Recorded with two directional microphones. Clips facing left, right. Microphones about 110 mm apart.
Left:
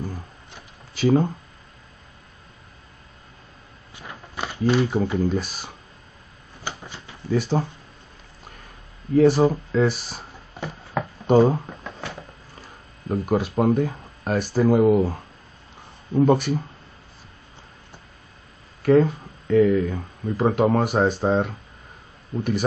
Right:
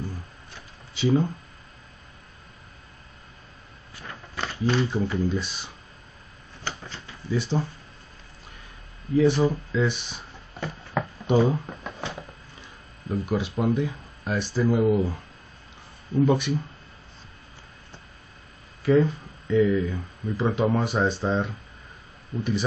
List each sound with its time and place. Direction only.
0.9 s speech: 50° left (ahead or behind)
3.9 s a sound: 10° left (ahead or behind)
4.8 s speech: 50° left (ahead or behind)
6.6 s a sound: 15° left (ahead or behind)
7.2 s speech: 50° left (ahead or behind)
9.1 s speech: 45° left (ahead or behind)
11.2 s speech: 40° left (ahead or behind)
12.0 s a sound: 25° right (ahead or behind)
12.6 s speech: 45° left (ahead or behind)
18.8 s speech: 55° left (ahead or behind)